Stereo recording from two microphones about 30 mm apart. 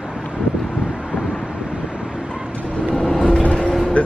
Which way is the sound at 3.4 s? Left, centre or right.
Left.